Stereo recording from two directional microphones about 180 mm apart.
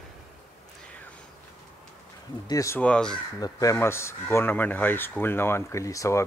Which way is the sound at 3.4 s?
15° left (ahead or behind).